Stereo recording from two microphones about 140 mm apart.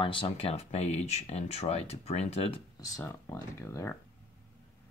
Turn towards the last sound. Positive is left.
turn(degrees=20)  # may be behind; listen again after turning